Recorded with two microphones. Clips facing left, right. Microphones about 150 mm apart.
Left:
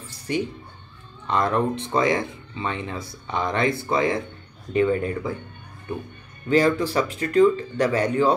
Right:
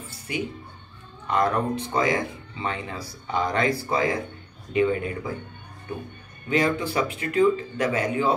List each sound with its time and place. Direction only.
0.3 s speech: 35° left (ahead or behind)
4.7 s speech: 40° left (ahead or behind)
6.5 s speech: 35° left (ahead or behind)